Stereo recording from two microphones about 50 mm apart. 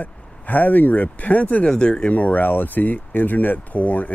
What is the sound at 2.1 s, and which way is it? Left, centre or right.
Speech, left.